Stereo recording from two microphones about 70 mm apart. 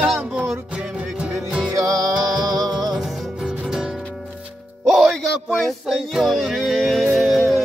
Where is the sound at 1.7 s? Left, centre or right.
Right.